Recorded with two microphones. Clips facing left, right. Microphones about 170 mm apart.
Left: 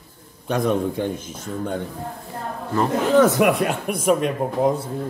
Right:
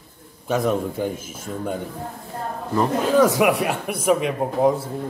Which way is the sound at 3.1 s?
10° right (ahead or behind).